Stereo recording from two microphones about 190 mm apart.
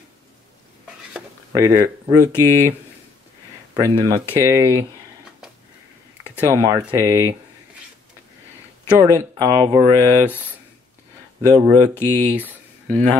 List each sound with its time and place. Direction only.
1.5 s speech: 20° right (ahead or behind)
3.7 s speech: 20° right (ahead or behind)
6.4 s speech: 15° right (ahead or behind)
8.8 s speech: 15° right (ahead or behind)
12.8 s speech: 5° left (ahead or behind)